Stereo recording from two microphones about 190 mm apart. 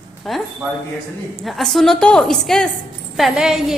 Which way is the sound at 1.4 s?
Centre (ahead or behind).